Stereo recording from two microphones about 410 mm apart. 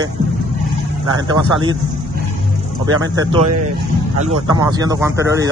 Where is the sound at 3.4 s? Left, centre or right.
Right.